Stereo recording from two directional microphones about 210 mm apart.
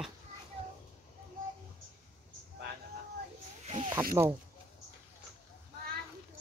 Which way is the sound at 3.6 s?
30° right (ahead or behind).